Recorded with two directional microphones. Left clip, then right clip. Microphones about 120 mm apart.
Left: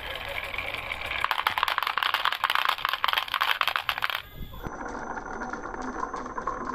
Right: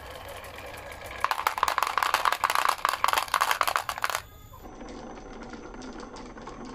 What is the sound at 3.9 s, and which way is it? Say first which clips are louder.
Coin: left 2 dB; 30° right (ahead or behind).